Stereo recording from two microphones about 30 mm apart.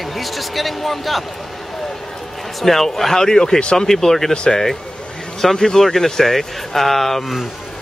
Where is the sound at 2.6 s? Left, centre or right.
Centre.